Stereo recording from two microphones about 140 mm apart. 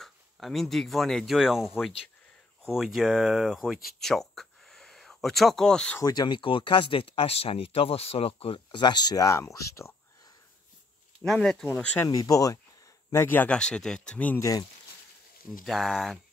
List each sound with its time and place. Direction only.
0.0 s speech: centre (ahead or behind)
5.9 s speech: 30° left (ahead or behind)
11.2 s speech: 5° left (ahead or behind)
12.1 s speech: 25° left (ahead or behind); by 14.4 s 10° left (ahead or behind)
15.6 s speech: centre (ahead or behind)